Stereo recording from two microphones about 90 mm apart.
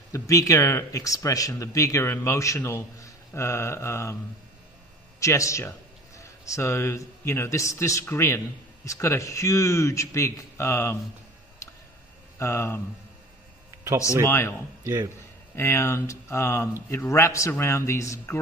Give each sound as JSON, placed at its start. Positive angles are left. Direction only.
{"t": 0.1, "sound": "a man's voice", "side_deg": 40}
{"t": 5.2, "sound": "a man's voice", "side_deg": 35}
{"t": 12.4, "sound": "speech", "side_deg": 30}
{"t": 14.2, "sound": "speech", "side_deg": 30}
{"t": 14.8, "sound": "speech", "side_deg": -35}
{"t": 15.5, "sound": "a man's voice", "side_deg": 30}